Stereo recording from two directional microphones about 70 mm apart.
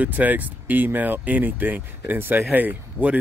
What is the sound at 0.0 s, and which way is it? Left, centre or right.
Speech, right.